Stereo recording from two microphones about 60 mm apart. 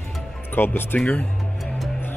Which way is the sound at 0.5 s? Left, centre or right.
Left.